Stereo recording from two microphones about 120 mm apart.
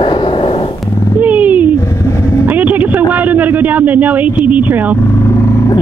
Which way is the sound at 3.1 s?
15° right (ahead or behind).